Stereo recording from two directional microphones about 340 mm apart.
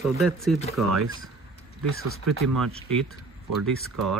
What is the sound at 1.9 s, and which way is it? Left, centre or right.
Speech, right.